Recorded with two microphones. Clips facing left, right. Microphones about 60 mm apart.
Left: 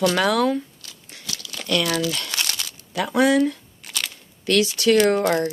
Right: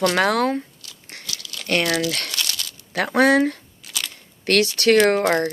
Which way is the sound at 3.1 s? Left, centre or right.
Right.